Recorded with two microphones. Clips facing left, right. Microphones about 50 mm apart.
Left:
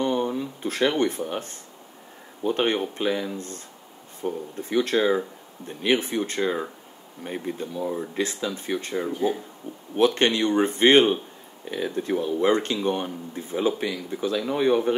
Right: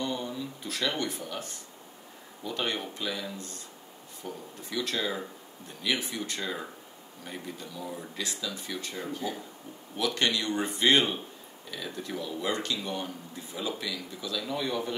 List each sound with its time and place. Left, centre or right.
0.0 s a sound: left
2.4 s speech: left
9.2 s speech: left
9.9 s speech: left